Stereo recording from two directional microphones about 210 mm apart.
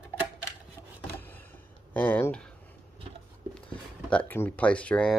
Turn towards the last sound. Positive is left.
turn(degrees=5)  # may be behind; listen again after turning